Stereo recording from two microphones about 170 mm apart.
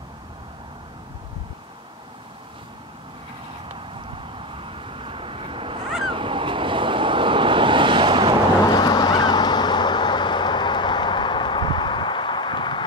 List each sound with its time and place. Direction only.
4.6 s vehicle: 30° right (ahead or behind)
8.6 s honk: 25° left (ahead or behind)